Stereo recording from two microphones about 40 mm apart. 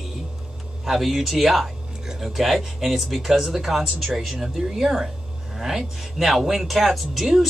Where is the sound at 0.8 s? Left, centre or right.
Centre.